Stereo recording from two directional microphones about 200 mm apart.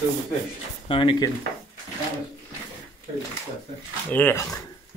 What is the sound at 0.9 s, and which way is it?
Speech, 25° left (ahead or behind).